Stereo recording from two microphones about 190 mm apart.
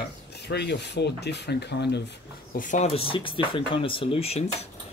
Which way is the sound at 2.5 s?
40° left (ahead or behind).